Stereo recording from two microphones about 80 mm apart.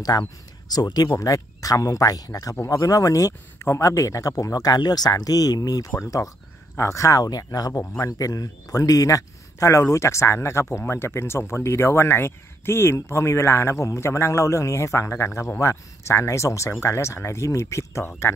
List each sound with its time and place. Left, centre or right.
0.1 s speech: left